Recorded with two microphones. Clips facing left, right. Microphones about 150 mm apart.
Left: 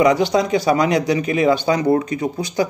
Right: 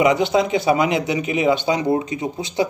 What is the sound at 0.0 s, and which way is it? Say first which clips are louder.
Speech: left 1 dB; 25° right (ahead or behind).